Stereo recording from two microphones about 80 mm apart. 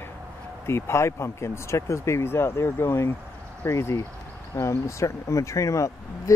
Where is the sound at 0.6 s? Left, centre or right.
Left.